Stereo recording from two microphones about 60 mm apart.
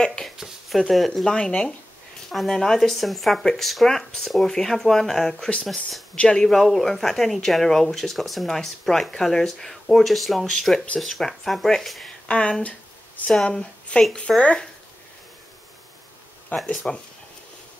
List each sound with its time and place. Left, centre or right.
0.0 s a sound: centre
0.4 s speech: centre
12.3 s speech: centre
13.3 s speech: centre
16.7 s speech: centre